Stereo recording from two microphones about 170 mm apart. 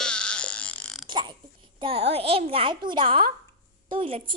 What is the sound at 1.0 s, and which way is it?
Burping, 25° right (ahead or behind).